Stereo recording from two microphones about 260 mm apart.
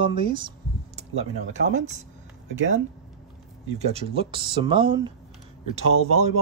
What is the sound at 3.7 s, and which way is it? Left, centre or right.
Speech, right.